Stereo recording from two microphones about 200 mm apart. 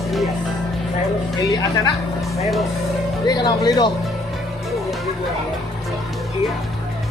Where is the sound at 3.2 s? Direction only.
20° left (ahead or behind).